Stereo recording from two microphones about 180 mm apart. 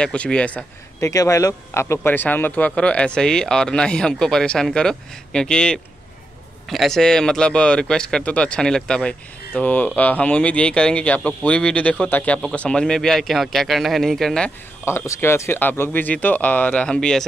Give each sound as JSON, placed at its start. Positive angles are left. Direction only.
{"t": 0.0, "sound": "speech", "side_deg": 5}
{"t": 1.0, "sound": "speech", "side_deg": 20}